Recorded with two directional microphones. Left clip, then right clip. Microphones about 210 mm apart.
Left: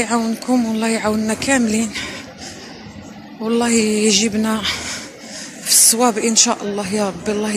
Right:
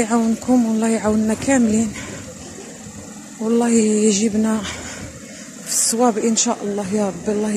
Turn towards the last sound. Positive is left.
turn(degrees=-20)  # may be behind; listen again after turning